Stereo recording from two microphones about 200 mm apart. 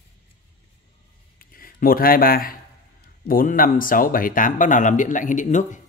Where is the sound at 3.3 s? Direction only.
45° left (ahead or behind).